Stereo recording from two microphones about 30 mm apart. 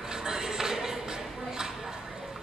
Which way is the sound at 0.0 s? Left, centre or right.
Centre.